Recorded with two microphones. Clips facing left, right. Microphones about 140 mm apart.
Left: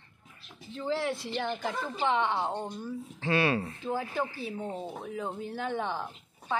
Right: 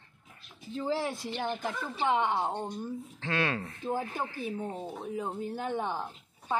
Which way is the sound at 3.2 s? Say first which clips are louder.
Left 5 dB; 10° left (ahead or behind).